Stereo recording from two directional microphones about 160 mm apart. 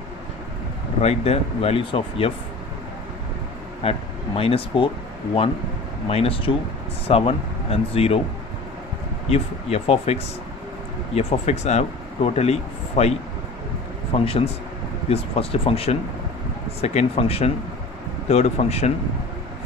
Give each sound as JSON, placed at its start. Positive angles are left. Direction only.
{"t": 1.0, "sound": "speech", "side_deg": 40}
{"t": 3.8, "sound": "speech", "side_deg": 40}
{"t": 9.3, "sound": "speech", "side_deg": 40}
{"t": 14.1, "sound": "speech", "side_deg": 35}